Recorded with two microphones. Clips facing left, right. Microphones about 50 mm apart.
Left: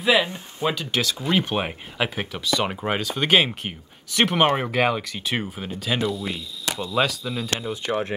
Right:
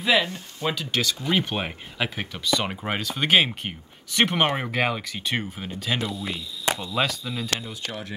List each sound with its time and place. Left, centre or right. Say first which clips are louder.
0.0 s speech: left 2 dB; centre
7.6 s speech: left 8 dB; left